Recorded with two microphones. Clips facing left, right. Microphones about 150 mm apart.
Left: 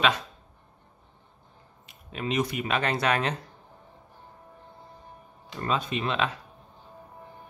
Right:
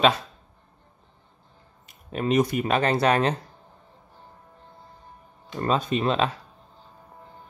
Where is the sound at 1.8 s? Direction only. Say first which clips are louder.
Right 6 dB; 45° right (ahead or behind).